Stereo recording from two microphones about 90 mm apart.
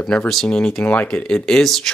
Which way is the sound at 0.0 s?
10° left (ahead or behind).